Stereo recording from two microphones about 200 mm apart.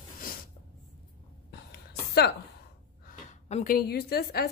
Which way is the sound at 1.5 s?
55° left (ahead or behind).